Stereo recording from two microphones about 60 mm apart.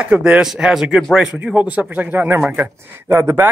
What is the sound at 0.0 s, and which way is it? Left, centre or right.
Speech, centre.